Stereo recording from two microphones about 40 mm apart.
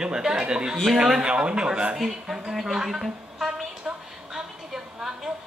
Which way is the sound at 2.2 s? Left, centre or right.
Centre.